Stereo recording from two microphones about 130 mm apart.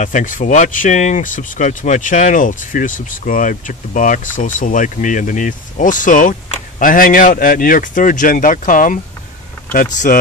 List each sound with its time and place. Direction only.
0.0 s speech: 85° left
10.1 s speech: 90° left